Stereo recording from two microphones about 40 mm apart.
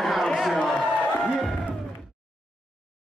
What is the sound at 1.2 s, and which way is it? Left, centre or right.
Music, centre.